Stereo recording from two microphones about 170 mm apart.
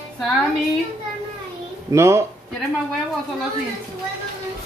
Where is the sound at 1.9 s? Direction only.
15° right (ahead or behind).